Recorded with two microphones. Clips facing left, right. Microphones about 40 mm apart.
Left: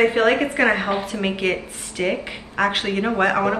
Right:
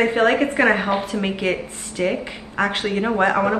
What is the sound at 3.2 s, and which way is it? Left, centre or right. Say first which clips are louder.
Speech: right 1 dB; centre.